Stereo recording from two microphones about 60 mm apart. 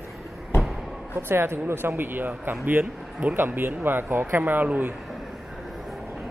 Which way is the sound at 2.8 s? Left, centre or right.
Right.